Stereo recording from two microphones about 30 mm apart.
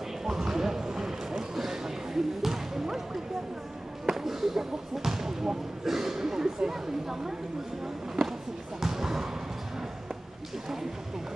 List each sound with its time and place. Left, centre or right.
0.4 s a sound: centre
4.0 s basketball bounce: centre
8.8 s basketball bounce: centre